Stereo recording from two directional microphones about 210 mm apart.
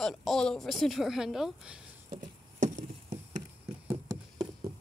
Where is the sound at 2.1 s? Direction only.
35° right (ahead or behind).